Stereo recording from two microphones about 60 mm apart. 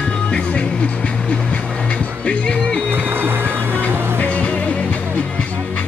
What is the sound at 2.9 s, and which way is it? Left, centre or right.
Music, right.